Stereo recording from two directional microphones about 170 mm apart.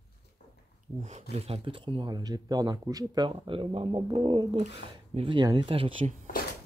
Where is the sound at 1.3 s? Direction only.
35° right (ahead or behind).